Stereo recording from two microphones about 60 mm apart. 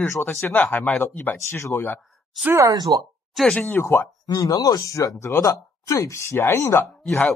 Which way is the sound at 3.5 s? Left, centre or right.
Left.